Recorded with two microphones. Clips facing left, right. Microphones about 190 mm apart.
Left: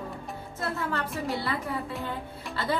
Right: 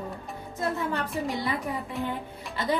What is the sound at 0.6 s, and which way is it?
Speech, 15° right (ahead or behind).